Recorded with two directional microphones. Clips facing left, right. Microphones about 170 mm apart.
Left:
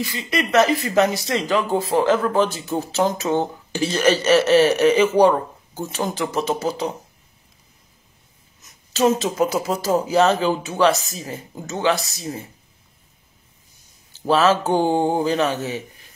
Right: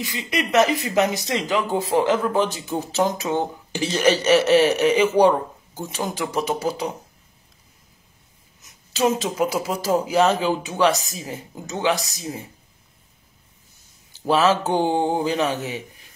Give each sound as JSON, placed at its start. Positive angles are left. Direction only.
{"t": 0.0, "sound": "speech", "side_deg": -15}
{"t": 6.1, "sound": "speech", "side_deg": -10}
{"t": 8.9, "sound": "speech", "side_deg": -10}
{"t": 14.3, "sound": "speech", "side_deg": -15}